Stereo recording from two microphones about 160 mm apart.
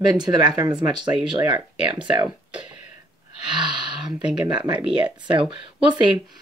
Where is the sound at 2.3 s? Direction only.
5° right (ahead or behind).